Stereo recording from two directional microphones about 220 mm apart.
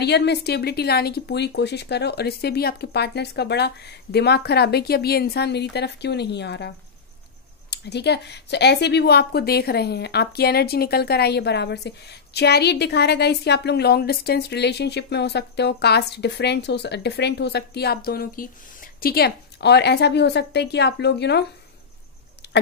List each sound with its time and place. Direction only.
0.0 s speech: 50° left (ahead or behind)
7.7 s speech: 50° left (ahead or behind)
22.4 s a sound: 50° left (ahead or behind)